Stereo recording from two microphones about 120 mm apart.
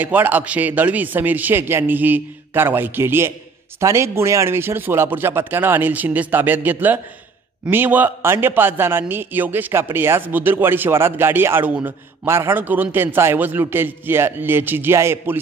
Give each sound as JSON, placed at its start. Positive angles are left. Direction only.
{"t": 0.0, "sound": "a man's voice", "side_deg": -15}